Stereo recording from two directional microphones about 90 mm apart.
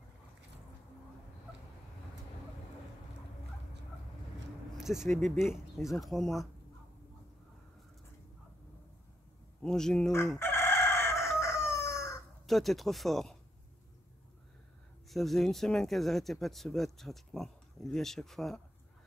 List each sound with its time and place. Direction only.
4.7 s speech: 5° right (ahead or behind)
9.6 s a man's voice: 5° left (ahead or behind)
10.4 s chicken: 30° left (ahead or behind)
12.4 s speech: centre (ahead or behind)
15.0 s speech: centre (ahead or behind)